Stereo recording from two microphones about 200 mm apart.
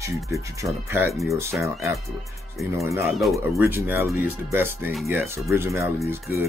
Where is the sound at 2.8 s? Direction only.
15° right (ahead or behind).